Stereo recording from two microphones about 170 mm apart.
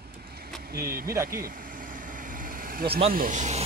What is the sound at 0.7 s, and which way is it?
Speech, 60° right (ahead or behind).